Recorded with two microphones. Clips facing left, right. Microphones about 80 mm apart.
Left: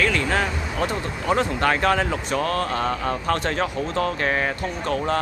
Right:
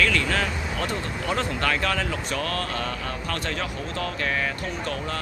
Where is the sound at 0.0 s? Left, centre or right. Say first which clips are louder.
Left 2 dB; left.